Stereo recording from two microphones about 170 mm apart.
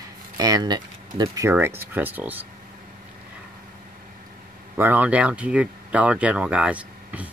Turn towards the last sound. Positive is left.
turn(degrees=-10)  # may be behind; listen again after turning